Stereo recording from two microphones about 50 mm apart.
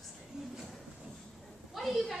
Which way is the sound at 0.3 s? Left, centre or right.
Centre.